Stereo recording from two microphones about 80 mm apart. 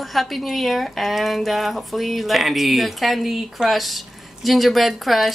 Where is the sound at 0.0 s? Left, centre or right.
Centre.